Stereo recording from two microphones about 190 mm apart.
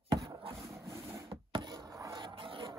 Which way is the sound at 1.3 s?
25° right (ahead or behind).